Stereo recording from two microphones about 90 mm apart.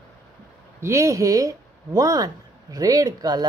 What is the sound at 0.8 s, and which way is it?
Speech, 35° right (ahead or behind).